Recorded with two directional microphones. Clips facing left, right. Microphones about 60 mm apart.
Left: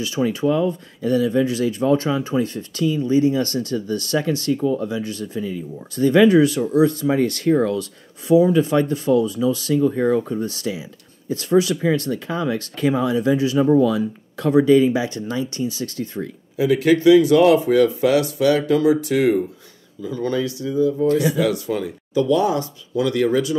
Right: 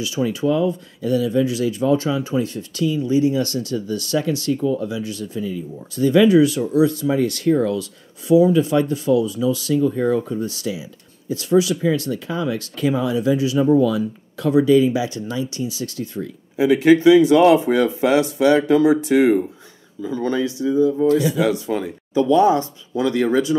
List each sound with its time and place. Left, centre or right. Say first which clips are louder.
0.0 s speech: left 1 dB; left
16.5 s speech: right 3 dB; right